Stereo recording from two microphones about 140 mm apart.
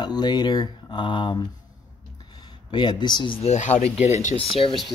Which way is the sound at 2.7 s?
35° left (ahead or behind).